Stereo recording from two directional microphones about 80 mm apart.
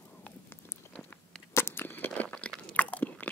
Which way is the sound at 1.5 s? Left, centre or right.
Left.